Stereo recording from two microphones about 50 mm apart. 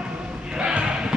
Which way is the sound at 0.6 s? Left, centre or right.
Centre.